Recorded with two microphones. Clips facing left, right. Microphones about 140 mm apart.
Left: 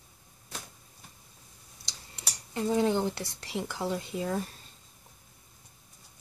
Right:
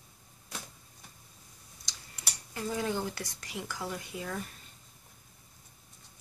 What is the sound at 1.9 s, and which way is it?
Speech, 25° left (ahead or behind).